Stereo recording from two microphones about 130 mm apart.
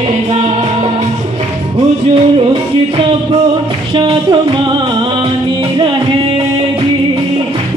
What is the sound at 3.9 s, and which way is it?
Music, 35° right (ahead or behind).